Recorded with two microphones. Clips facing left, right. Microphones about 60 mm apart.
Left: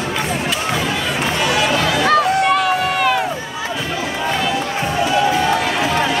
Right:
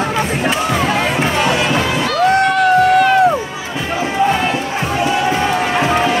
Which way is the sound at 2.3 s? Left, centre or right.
Right.